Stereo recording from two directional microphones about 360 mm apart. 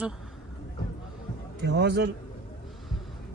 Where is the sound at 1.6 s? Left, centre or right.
Right.